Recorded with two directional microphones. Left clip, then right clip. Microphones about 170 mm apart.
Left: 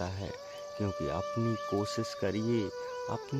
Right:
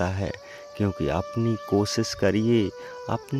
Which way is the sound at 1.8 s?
40° right (ahead or behind).